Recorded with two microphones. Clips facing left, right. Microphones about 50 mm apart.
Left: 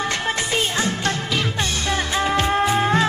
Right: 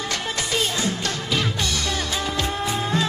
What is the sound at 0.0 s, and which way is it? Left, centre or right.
Music, left.